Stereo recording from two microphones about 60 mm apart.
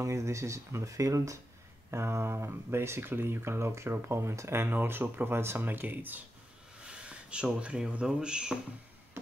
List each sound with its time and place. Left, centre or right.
0.0 s speech: right
1.9 s speech: right
6.8 s a sound: centre
7.6 s speech: centre